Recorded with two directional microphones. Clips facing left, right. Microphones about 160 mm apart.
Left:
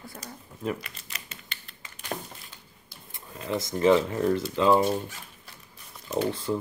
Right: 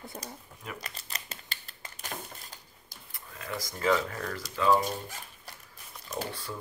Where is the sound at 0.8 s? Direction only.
40° right (ahead or behind).